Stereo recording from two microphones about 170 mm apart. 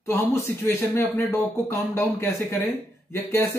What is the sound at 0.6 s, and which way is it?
Speech, 10° left (ahead or behind).